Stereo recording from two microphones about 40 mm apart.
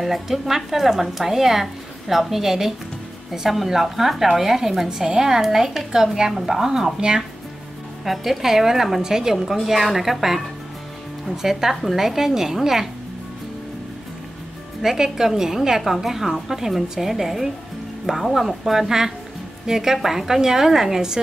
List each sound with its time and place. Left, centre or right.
0.0 s speech: centre
8.0 s speech: centre
14.8 s speech: centre